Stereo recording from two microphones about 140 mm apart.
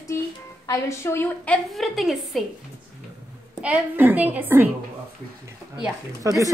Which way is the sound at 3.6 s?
10° right (ahead or behind).